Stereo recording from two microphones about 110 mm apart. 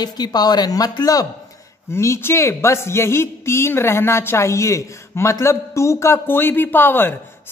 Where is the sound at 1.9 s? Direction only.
25° left (ahead or behind).